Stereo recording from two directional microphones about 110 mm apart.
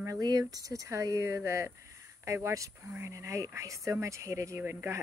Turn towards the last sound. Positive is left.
turn(degrees=-25)  # may be behind; listen again after turning